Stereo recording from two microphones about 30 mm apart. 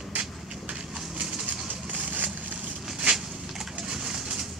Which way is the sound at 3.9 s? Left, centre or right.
Centre.